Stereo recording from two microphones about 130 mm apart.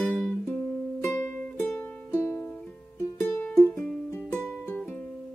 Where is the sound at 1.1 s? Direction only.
20° left (ahead or behind).